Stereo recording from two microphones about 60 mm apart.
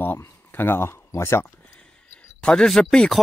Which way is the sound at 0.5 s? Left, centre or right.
Left.